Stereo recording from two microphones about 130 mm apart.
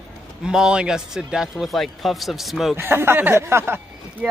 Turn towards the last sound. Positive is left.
turn(degrees=-20)  # may be behind; listen again after turning